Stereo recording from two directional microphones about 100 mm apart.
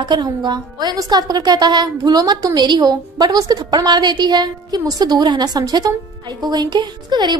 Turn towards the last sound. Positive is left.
turn(degrees=-45)  # may be behind; listen again after turning